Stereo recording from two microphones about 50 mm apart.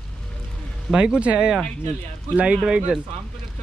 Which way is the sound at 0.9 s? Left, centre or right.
Centre.